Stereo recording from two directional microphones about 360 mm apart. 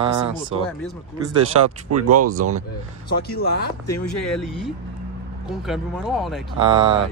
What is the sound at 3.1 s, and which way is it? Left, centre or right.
Speech, left.